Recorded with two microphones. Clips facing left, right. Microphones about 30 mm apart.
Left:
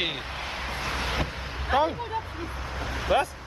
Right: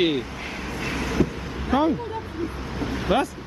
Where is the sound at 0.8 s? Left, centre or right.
Left.